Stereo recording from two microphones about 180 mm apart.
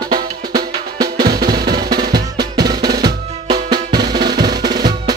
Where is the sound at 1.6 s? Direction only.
60° right (ahead or behind).